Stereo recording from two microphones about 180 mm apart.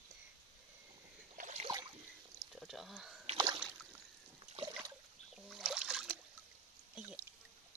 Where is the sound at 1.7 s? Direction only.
20° right (ahead or behind).